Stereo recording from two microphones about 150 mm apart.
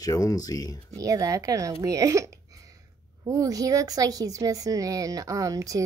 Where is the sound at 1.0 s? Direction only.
20° right (ahead or behind).